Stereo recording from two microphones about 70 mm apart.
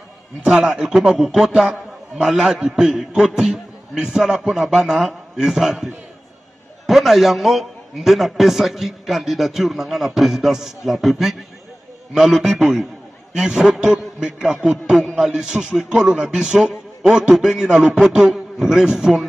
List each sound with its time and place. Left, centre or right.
0.4 s a man's voice: centre
6.9 s a man's voice: centre